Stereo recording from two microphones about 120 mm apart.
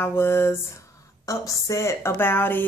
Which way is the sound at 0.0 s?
20° left (ahead or behind).